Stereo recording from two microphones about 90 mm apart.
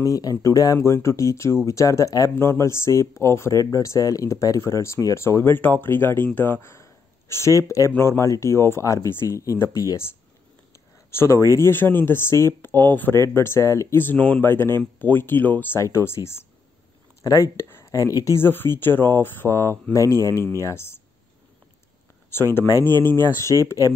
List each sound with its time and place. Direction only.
0.0 s speech: 40° left (ahead or behind)
11.1 s speech: 30° left (ahead or behind)
17.2 s speech: 40° left (ahead or behind)
17.6 s a sound: 25° left (ahead or behind)
17.9 s speech: 35° left (ahead or behind)
22.3 s speech: 25° left (ahead or behind)